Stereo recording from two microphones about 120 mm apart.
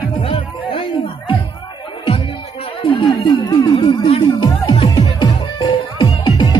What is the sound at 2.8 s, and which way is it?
Music, 45° left (ahead or behind).